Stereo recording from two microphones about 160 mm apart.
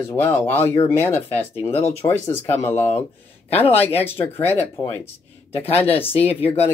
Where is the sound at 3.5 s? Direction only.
40° left (ahead or behind).